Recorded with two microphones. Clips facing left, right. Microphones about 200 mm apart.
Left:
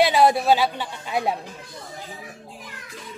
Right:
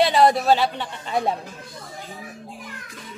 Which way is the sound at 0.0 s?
5° left (ahead or behind).